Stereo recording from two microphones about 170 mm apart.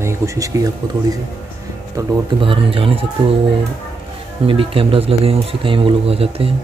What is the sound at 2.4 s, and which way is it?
Speech, 30° right (ahead or behind).